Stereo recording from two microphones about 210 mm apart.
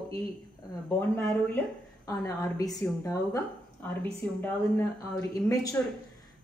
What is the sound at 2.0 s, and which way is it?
A woman's voice, 15° left (ahead or behind).